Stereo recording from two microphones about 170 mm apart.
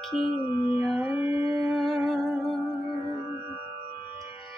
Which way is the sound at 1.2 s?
20° right (ahead or behind).